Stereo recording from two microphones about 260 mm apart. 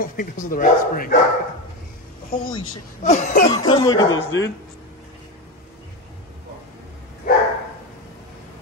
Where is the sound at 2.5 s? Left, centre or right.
Left.